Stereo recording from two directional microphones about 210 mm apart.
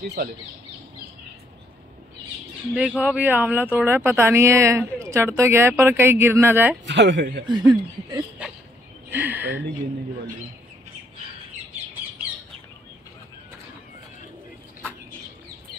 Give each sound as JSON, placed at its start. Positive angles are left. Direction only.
{"t": 2.7, "sound": "speech", "side_deg": 0}
{"t": 6.9, "sound": "speech", "side_deg": -60}
{"t": 7.4, "sound": "speech", "side_deg": -20}
{"t": 8.4, "sound": "a sound", "side_deg": -5}
{"t": 9.1, "sound": "speech", "side_deg": -10}